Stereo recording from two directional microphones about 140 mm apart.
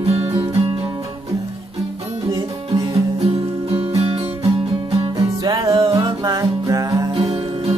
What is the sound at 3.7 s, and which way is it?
Music, 45° right (ahead or behind).